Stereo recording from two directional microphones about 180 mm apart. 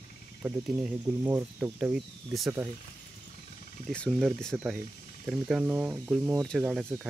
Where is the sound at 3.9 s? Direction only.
5° left (ahead or behind).